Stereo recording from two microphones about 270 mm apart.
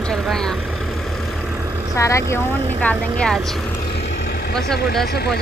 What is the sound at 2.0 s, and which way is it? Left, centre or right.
Speech, centre.